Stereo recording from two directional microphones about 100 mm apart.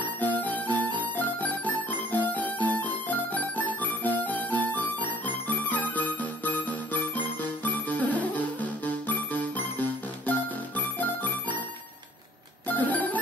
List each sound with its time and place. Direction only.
0.0 s music: 15° left (ahead or behind)
12.6 s music: 15° left (ahead or behind)